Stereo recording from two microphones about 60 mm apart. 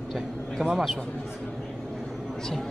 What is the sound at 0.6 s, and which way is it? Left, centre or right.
Speech, centre.